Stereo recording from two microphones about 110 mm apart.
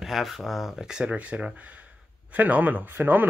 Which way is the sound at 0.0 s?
Centre (ahead or behind).